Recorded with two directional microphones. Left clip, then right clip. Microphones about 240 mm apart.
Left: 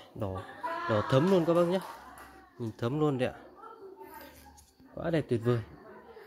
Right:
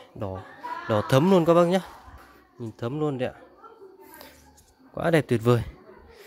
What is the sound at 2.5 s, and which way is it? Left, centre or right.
Speech, centre.